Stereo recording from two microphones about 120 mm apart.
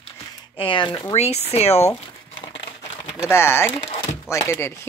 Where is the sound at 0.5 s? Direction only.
45° left (ahead or behind).